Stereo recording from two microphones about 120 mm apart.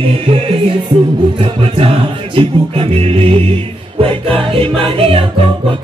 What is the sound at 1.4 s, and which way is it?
Music, 50° right (ahead or behind).